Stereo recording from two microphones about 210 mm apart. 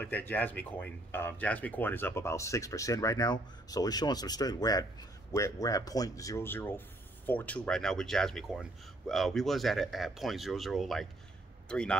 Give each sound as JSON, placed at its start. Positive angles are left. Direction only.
{"t": 0.0, "sound": "speech", "side_deg": 10}